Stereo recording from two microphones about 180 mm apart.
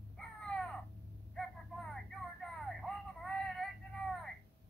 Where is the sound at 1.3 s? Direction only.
Centre (ahead or behind).